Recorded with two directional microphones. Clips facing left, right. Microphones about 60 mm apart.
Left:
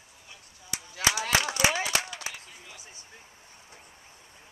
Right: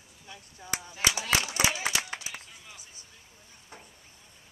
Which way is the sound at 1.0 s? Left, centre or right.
Left.